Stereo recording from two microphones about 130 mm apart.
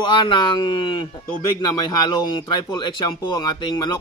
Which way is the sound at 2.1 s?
35° left (ahead or behind).